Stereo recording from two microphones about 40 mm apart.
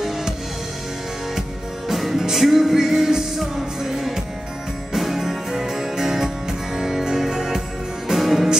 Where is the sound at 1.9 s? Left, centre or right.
Centre.